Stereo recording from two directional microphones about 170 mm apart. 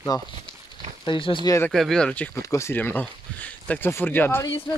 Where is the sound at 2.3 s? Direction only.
15° left (ahead or behind).